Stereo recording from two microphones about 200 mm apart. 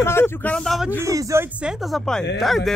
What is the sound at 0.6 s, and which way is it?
Speech, centre (ahead or behind).